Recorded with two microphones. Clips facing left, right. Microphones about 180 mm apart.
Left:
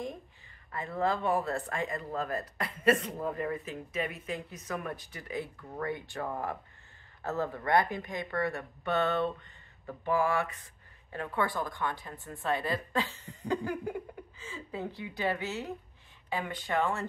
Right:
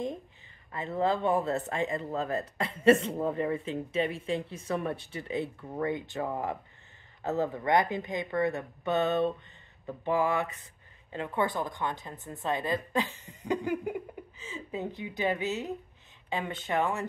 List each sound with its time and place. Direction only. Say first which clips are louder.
0.7 s speech: right 2 dB; 25° right (ahead or behind)